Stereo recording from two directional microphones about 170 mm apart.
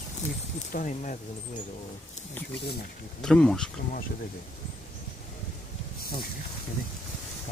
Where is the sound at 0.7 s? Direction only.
50° left (ahead or behind).